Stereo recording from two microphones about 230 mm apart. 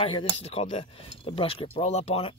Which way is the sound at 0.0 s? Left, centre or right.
Left.